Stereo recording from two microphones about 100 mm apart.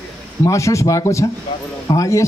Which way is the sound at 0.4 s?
30° left (ahead or behind).